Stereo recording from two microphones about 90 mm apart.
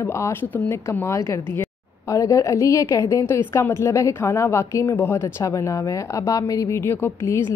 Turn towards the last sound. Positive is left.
turn(degrees=30)  # may be behind; listen again after turning